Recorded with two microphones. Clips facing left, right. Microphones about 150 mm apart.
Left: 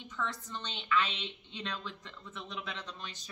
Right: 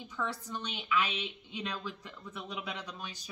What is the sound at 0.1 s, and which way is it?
A woman's voice, 10° right (ahead or behind).